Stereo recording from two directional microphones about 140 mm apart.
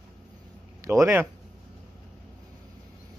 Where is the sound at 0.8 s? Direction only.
20° right (ahead or behind).